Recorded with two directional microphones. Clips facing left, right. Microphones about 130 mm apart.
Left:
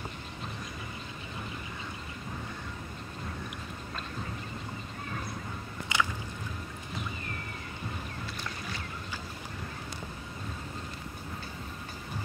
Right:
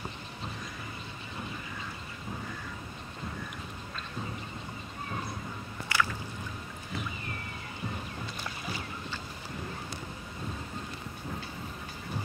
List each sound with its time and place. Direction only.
5.9 s squish: 20° left (ahead or behind)